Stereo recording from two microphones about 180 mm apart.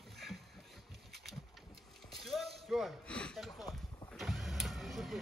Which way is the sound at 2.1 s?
Centre (ahead or behind).